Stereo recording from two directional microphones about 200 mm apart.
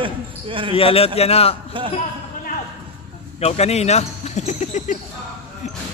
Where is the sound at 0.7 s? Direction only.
30° left (ahead or behind).